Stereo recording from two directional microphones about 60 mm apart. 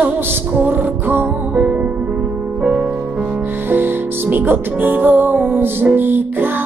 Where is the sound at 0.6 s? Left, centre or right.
Right.